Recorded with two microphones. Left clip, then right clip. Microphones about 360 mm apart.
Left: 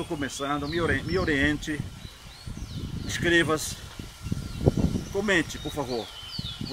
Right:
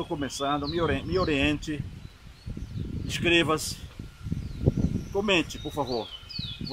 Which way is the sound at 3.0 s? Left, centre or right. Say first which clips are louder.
Even; centre.